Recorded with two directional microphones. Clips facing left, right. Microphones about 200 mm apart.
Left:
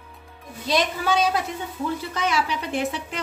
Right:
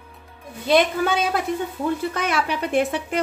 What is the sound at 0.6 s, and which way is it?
A woman's voice, 55° right (ahead or behind).